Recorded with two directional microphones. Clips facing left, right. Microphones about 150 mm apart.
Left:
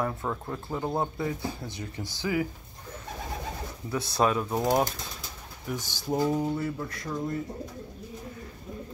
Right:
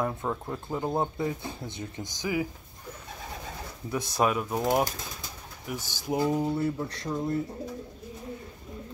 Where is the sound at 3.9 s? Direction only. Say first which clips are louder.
Left 1 dB; 15° right (ahead or behind).